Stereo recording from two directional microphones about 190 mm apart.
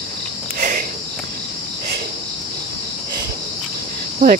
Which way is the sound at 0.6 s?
45° right (ahead or behind).